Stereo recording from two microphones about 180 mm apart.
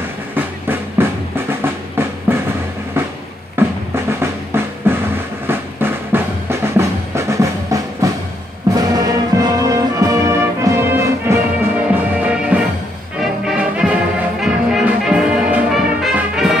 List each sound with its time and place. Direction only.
0.3 s music: 10° right (ahead or behind)
3.5 s music: 15° right (ahead or behind)
14.4 s brass instrument: 5° right (ahead or behind)